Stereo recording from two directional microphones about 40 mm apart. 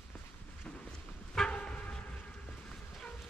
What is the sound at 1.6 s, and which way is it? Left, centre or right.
Train, left.